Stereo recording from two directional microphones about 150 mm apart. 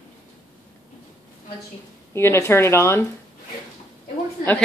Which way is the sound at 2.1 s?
15° left (ahead or behind).